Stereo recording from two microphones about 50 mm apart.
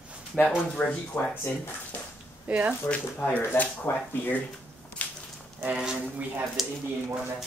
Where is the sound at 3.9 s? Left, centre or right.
Left.